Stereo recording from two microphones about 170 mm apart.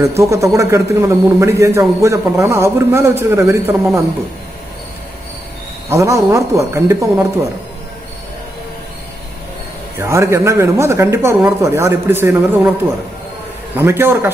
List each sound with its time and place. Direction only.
0.2 s speech: 15° right (ahead or behind)
5.9 s speech: 20° right (ahead or behind)
9.9 s speech: 15° right (ahead or behind)
13.7 s speech: 15° right (ahead or behind)